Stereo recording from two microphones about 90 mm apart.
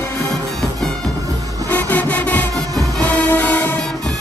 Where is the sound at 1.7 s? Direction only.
20° left (ahead or behind).